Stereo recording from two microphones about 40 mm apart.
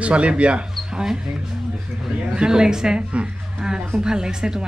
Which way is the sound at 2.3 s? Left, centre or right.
Centre.